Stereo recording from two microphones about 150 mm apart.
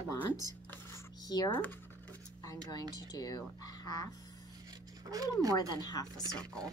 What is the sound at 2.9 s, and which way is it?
Speech, 25° left (ahead or behind).